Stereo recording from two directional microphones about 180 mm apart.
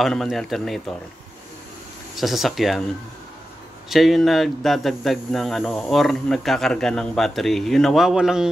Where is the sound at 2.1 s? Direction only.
Centre (ahead or behind).